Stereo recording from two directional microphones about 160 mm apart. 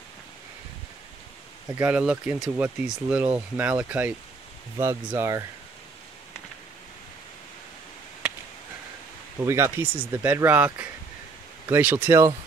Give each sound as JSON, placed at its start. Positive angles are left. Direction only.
{"t": 1.8, "sound": "speech", "side_deg": -10}
{"t": 5.1, "sound": "speech", "side_deg": -15}
{"t": 9.4, "sound": "speech", "side_deg": -15}